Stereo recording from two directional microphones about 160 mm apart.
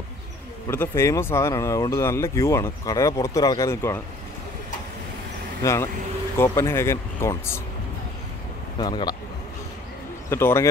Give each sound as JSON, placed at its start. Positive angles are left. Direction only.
{"t": 0.7, "sound": "speech", "side_deg": 15}
{"t": 5.6, "sound": "a man's voice", "side_deg": 20}
{"t": 8.7, "sound": "a man's voice", "side_deg": 25}
{"t": 10.3, "sound": "speech", "side_deg": 15}